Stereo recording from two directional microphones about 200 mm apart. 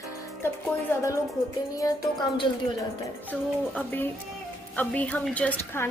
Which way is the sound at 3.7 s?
10° left (ahead or behind).